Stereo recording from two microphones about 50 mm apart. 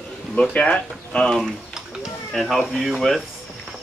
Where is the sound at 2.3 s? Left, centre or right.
Centre.